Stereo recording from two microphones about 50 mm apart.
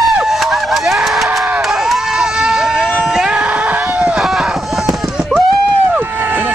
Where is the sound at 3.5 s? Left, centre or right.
Right.